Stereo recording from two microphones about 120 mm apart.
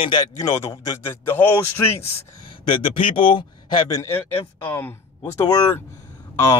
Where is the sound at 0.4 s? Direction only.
25° left (ahead or behind).